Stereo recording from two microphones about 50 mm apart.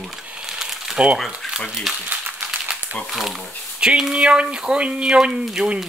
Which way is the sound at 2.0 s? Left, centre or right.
Right.